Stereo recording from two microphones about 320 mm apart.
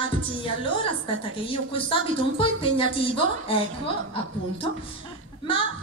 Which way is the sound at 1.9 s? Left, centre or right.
Centre.